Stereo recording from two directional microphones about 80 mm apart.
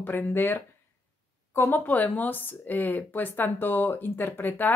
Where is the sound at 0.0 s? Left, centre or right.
Left.